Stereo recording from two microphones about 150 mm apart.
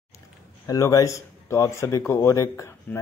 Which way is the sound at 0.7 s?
20° left (ahead or behind).